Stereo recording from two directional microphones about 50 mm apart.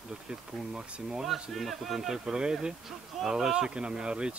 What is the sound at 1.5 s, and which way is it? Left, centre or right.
Speech, centre.